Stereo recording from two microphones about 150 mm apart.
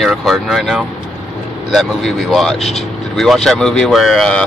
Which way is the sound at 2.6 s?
45° left (ahead or behind).